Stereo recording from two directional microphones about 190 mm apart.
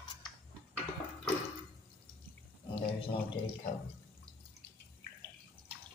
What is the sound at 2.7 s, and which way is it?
Speech, 30° left (ahead or behind).